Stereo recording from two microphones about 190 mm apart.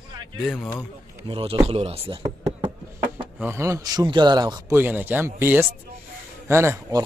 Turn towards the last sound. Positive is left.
turn(degrees=-15)  # may be behind; listen again after turning